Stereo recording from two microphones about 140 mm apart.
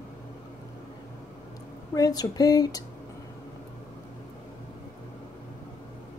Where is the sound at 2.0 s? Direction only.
25° left (ahead or behind).